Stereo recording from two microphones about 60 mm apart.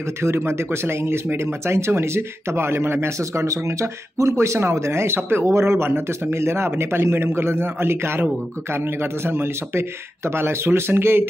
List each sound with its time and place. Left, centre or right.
0.2 s speech: right